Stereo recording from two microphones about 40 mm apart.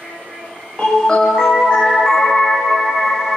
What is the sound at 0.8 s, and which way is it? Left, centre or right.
Music, centre.